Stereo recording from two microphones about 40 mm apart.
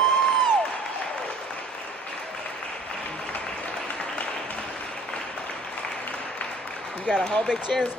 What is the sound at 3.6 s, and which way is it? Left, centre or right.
Applause, left.